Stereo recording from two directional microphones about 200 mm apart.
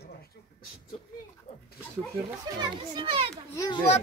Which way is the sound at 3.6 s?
20° left (ahead or behind).